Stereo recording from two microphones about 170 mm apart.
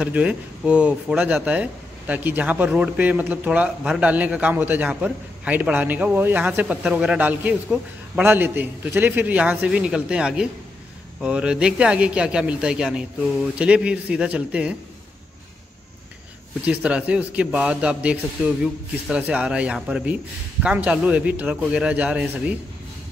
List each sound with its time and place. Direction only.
0.0 s speech: 5° right (ahead or behind)
16.6 s speech: 5° right (ahead or behind)